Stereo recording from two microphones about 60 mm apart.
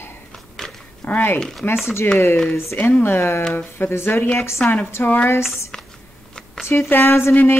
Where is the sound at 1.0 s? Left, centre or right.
Left.